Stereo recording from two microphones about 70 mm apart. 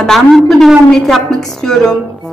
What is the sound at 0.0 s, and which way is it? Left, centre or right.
A woman's voice, centre.